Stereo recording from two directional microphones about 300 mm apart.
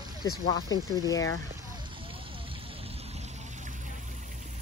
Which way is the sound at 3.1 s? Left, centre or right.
Right.